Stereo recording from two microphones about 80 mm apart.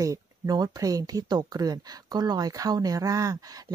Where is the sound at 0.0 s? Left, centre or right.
Right.